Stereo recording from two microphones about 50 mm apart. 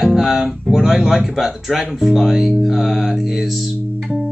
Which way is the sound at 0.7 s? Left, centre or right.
Centre.